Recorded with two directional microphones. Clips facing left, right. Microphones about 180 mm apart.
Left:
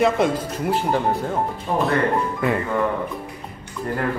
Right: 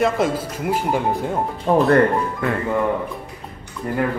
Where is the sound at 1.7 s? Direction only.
55° right (ahead or behind).